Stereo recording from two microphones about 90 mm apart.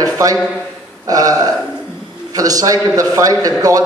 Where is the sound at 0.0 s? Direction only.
40° right (ahead or behind).